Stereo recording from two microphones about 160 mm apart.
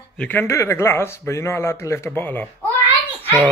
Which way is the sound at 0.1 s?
10° left (ahead or behind).